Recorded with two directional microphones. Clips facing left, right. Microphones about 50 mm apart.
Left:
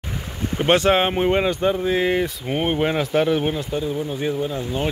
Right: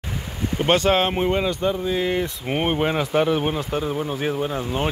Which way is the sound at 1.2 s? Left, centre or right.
Left.